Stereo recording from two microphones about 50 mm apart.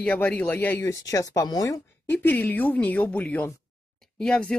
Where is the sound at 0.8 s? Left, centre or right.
Left.